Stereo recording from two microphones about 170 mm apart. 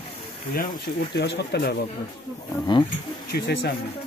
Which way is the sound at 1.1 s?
80° left.